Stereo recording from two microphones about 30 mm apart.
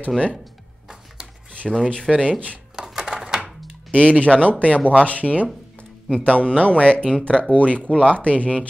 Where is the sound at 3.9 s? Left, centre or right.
Left.